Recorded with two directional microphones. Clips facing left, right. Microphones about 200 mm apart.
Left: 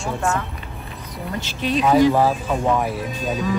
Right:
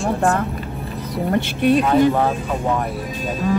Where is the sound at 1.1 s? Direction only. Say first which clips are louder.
Right 9 dB; 60° right (ahead or behind).